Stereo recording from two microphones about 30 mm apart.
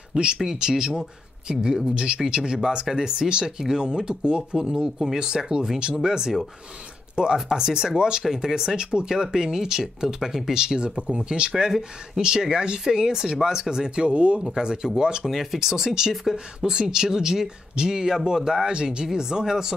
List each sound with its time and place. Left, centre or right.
0.1 s speech: right
4.6 s speech: right
12.8 s speech: centre
13.9 s speech: right
15.2 s speech: centre
18.7 s speech: right